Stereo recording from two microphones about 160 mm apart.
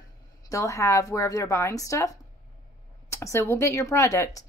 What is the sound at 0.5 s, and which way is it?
A woman's voice, 20° left (ahead or behind).